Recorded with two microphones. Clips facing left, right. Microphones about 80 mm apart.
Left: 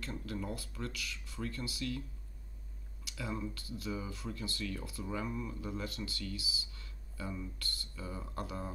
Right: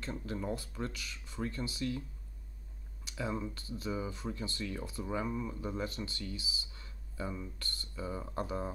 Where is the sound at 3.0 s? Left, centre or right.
Right.